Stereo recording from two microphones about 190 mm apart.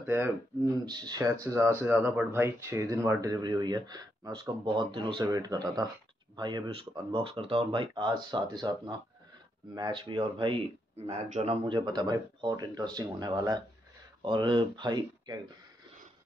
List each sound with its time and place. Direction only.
0.0 s speech: 10° right (ahead or behind)
0.8 s speech: 20° right (ahead or behind)
11.1 s speech: 35° right (ahead or behind)